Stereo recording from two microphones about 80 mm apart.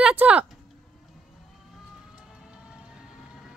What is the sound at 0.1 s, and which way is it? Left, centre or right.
Speech, centre.